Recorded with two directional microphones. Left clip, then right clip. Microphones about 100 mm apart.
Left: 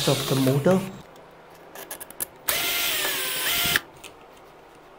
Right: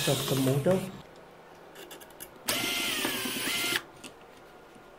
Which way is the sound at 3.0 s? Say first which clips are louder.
Left 5 dB; 15° left (ahead or behind).